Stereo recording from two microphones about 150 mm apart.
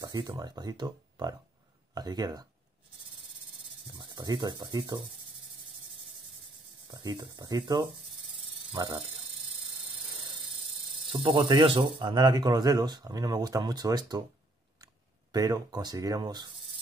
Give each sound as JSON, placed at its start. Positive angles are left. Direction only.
{"t": 0.4, "sound": "speech", "side_deg": -25}
{"t": 4.0, "sound": "speech", "side_deg": -25}
{"t": 6.9, "sound": "speech", "side_deg": -25}
{"t": 10.1, "sound": "a sound", "side_deg": -35}
{"t": 11.1, "sound": "speech", "side_deg": -35}
{"t": 15.3, "sound": "speech", "side_deg": -25}